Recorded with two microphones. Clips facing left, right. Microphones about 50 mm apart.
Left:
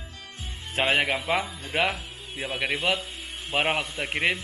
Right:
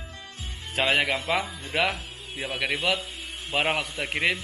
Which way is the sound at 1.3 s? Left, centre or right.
Left.